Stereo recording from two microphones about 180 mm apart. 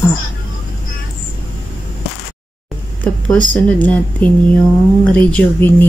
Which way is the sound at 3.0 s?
10° left (ahead or behind).